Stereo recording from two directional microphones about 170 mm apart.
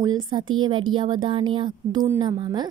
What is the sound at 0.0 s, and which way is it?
Speech, 25° right (ahead or behind).